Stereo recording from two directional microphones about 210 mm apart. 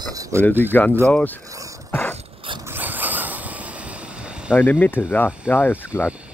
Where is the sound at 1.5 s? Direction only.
15° right (ahead or behind).